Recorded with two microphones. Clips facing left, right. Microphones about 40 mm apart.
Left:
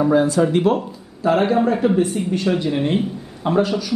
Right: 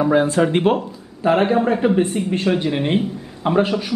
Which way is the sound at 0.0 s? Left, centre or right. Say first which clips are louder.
Even; right.